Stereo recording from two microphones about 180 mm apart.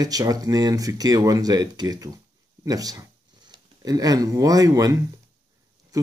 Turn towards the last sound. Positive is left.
turn(degrees=-20)  # may be behind; listen again after turning